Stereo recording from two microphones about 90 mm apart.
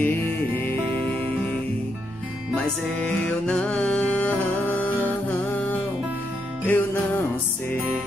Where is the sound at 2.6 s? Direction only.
10° left (ahead or behind).